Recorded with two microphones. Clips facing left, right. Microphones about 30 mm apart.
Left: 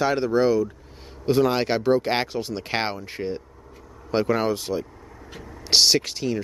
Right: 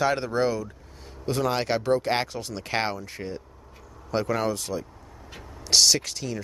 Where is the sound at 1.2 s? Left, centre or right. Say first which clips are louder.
Left 5 dB; centre.